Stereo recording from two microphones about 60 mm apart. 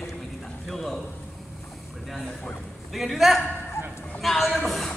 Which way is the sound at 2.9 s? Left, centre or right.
Centre.